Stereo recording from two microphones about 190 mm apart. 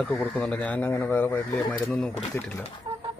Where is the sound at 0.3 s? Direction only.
5° left (ahead or behind).